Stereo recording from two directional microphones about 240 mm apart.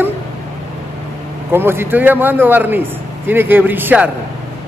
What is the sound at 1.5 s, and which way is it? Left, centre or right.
A man's voice, centre.